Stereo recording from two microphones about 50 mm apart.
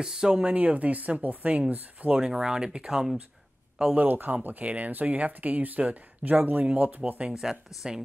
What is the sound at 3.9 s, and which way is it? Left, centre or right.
Speech, right.